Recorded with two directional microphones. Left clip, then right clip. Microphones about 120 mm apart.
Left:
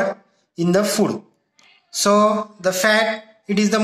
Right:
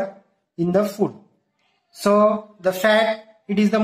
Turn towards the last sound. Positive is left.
turn(degrees=20)  # may be behind; listen again after turning